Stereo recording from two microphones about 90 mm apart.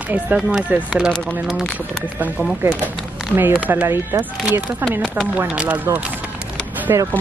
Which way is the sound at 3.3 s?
20° right (ahead or behind).